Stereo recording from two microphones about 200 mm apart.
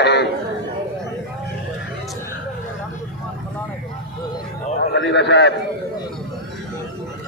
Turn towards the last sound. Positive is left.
turn(degrees=60)  # may be behind; listen again after turning